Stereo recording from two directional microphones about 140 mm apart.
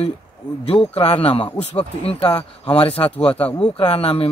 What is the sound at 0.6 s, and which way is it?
Speech, 45° left (ahead or behind).